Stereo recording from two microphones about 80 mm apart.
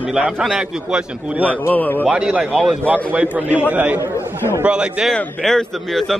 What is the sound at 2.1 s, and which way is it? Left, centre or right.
A man's voice, centre.